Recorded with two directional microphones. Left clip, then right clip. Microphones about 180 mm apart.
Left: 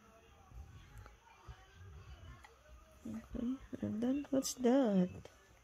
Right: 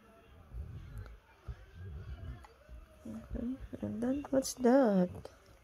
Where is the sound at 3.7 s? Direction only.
20° left (ahead or behind).